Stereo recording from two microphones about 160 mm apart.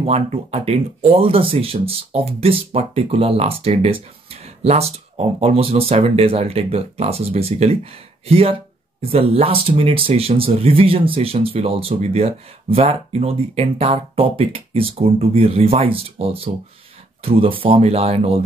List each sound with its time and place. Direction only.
0.0 s speech: 40° right (ahead or behind)